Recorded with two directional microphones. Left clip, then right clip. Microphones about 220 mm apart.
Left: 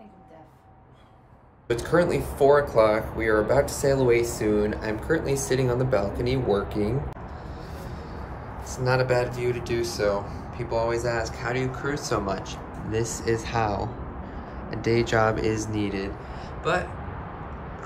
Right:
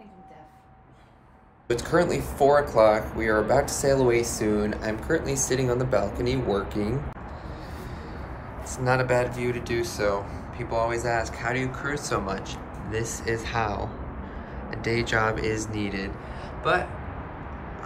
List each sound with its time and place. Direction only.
1.7 s speech: 10° left (ahead or behind)
8.7 s speech: 15° left (ahead or behind)